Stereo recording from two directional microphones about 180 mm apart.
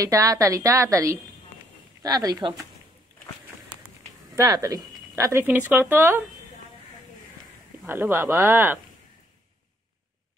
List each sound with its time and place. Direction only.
0.0 s speech: 20° right (ahead or behind)
4.4 s speech: 15° right (ahead or behind)
7.8 s speech: 10° right (ahead or behind)